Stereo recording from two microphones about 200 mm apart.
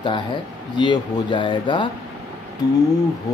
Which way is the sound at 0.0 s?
25° left (ahead or behind).